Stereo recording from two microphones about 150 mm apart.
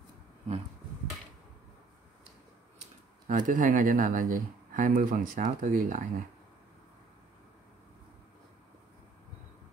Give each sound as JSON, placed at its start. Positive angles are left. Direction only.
{"t": 3.3, "sound": "speech", "side_deg": -60}